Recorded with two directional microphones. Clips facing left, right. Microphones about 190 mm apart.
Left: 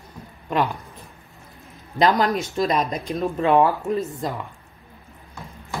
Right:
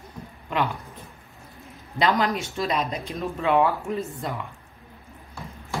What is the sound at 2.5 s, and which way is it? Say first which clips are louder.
Speech: left 4 dB; 40° left (ahead or behind).